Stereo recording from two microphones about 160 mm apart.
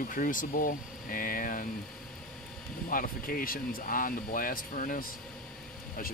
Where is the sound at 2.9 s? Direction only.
60° left (ahead or behind).